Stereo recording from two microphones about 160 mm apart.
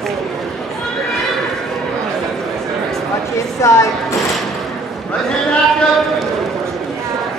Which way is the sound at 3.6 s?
20° left (ahead or behind).